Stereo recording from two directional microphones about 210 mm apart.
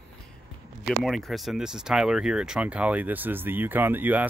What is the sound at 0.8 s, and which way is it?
Speech, centre (ahead or behind).